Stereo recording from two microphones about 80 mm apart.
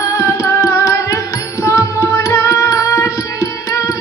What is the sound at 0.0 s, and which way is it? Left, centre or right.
Music, left.